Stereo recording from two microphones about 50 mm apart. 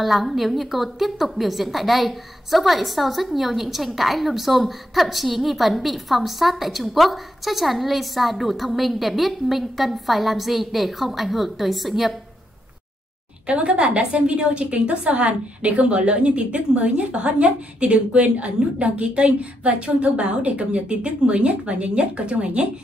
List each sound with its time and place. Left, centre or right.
0.0 s a woman's voice: centre
13.5 s a woman's voice: right